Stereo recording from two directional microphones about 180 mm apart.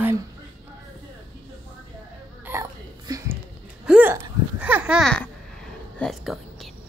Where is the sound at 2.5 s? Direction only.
15° right (ahead or behind).